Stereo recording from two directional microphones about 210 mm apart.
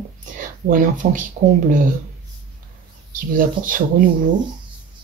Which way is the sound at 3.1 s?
40° right (ahead or behind).